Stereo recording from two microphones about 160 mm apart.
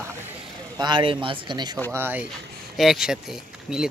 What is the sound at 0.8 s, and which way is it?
Speech, 30° right (ahead or behind).